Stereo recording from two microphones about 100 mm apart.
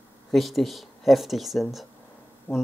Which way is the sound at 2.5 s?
20° left (ahead or behind).